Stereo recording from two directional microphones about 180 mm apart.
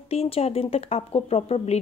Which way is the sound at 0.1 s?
35° left (ahead or behind).